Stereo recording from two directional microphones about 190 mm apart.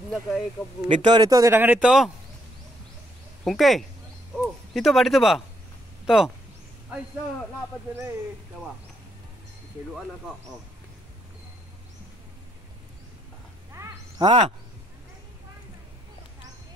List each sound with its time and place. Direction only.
0.1 s speech: centre (ahead or behind)
0.8 s speech: 25° right (ahead or behind); by 2.0 s 5° right (ahead or behind)
3.4 s speech: centre (ahead or behind)
13.7 s a sound: 20° right (ahead or behind)